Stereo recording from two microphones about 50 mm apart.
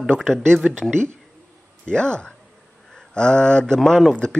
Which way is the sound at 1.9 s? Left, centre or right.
Centre.